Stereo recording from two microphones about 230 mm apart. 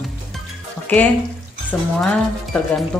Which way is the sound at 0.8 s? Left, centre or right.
Centre.